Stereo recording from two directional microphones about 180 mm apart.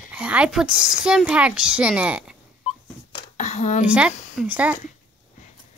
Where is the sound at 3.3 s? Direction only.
40° left (ahead or behind).